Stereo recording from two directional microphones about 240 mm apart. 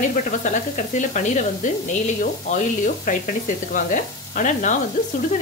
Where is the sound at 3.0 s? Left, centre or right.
Left.